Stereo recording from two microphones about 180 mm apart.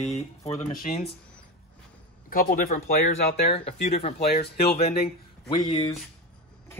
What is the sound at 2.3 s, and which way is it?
Speech, 50° left (ahead or behind).